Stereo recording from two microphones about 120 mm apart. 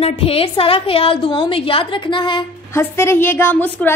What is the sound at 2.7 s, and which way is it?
A woman's voice, 20° left (ahead or behind).